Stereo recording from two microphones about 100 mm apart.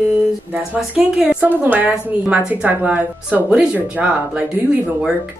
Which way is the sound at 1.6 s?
15° right (ahead or behind).